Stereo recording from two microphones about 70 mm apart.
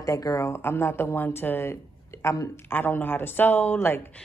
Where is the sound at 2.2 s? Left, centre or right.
Left.